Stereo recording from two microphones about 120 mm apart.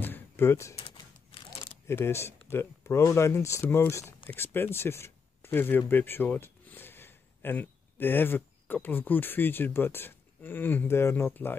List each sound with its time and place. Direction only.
0.0 s a sound: 15° left (ahead or behind)
0.9 s typewriter: 40° left (ahead or behind)
1.9 s speech: 20° left (ahead or behind)